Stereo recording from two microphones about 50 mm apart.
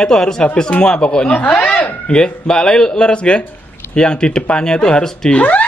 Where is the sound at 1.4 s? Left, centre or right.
Left.